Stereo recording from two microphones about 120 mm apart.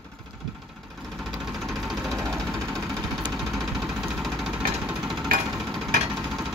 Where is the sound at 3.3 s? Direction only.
Centre (ahead or behind).